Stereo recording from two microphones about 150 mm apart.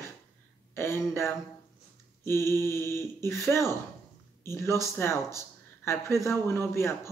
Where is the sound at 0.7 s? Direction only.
15° left (ahead or behind).